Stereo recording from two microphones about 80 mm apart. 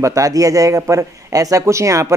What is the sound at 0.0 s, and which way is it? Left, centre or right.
A man's voice, right.